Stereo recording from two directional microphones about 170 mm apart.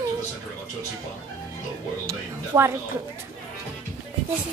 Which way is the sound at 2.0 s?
15° right (ahead or behind).